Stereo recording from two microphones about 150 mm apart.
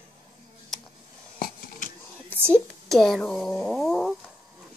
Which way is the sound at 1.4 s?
60° left (ahead or behind).